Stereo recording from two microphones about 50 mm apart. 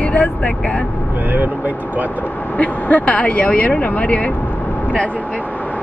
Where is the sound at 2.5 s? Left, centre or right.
Left.